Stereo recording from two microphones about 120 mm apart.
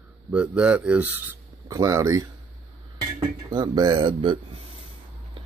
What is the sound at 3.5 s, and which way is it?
Speech, 35° right (ahead or behind).